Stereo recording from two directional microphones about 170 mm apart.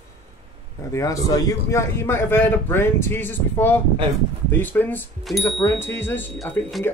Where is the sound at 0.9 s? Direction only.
20° left (ahead or behind).